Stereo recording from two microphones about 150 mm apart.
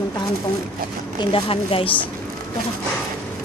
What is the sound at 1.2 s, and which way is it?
Speech, 40° left (ahead or behind).